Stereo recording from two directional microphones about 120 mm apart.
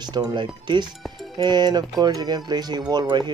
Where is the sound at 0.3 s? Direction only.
40° right (ahead or behind).